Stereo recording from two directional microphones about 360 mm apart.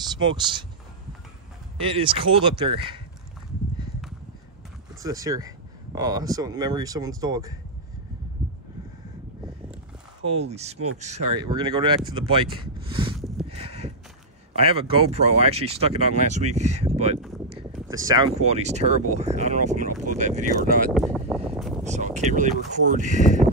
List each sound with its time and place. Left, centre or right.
0.2 s speech: centre
1.9 s speech: centre
5.0 s speech: centre
10.2 s speech: centre
12.8 s a sound: centre
14.5 s speech: centre
19.9 s speech: right
20.2 s speech: centre
20.9 s boat: centre
21.8 s speech: centre